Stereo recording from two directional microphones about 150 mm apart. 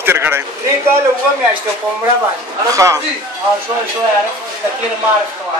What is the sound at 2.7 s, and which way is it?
Speech, 20° right (ahead or behind).